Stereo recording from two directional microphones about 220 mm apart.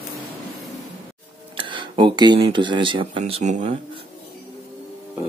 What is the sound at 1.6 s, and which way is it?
Speech, 20° right (ahead or behind).